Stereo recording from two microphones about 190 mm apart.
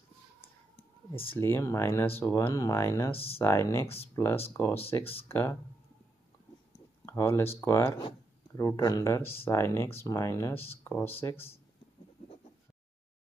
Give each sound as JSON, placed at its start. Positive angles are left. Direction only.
{"t": 1.3, "sound": "speech", "side_deg": 10}
{"t": 3.1, "sound": "speech", "side_deg": 30}
{"t": 3.3, "sound": "speech", "side_deg": 15}
{"t": 3.8, "sound": "speech", "side_deg": 30}
{"t": 4.1, "sound": "speech", "side_deg": 15}
{"t": 7.1, "sound": "speech", "side_deg": 15}